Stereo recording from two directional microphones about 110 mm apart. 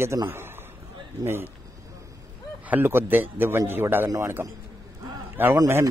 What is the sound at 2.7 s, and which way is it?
A man's voice, 20° right (ahead or behind).